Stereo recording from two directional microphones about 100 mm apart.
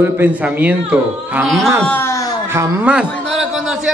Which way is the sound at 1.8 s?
20° left (ahead or behind).